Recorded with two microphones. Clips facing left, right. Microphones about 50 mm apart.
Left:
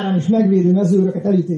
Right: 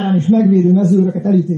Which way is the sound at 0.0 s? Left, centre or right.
Right.